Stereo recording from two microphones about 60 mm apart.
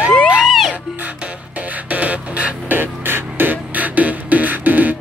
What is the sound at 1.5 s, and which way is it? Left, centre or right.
Music, right.